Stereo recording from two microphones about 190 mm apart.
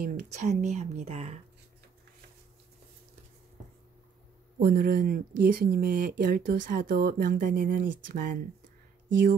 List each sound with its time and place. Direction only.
0.0 s speech: 45° right (ahead or behind)
4.6 s speech: 50° right (ahead or behind)